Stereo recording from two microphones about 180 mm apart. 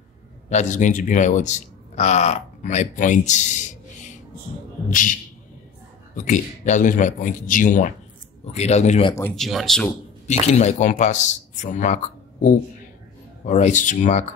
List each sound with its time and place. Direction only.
0.5 s a man's voice: 40° left (ahead or behind)
9.3 s speech: centre (ahead or behind)
10.2 s a man's voice: 40° left (ahead or behind)